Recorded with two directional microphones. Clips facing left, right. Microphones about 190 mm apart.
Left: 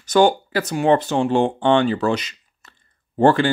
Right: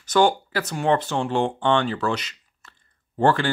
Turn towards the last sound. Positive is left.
turn(degrees=15)  # may be behind; listen again after turning